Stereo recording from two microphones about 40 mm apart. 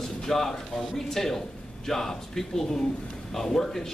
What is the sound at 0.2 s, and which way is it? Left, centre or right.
Speech, centre.